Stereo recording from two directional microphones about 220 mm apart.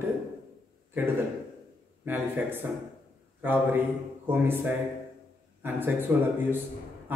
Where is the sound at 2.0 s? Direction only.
10° right (ahead or behind).